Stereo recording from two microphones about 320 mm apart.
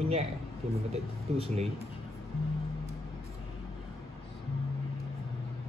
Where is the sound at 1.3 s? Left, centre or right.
Centre.